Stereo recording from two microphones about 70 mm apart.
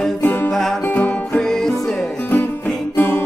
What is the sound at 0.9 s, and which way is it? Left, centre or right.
Music, left.